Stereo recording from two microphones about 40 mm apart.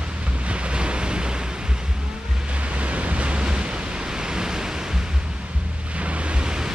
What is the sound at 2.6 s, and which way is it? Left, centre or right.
Waves, right.